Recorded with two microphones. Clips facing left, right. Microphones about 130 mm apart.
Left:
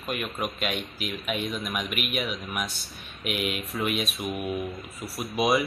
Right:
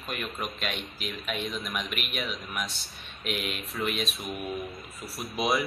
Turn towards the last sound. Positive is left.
turn(degrees=0)  # may be behind; listen again after turning